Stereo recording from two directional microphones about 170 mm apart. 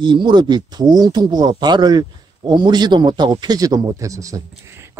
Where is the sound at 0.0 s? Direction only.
30° right (ahead or behind).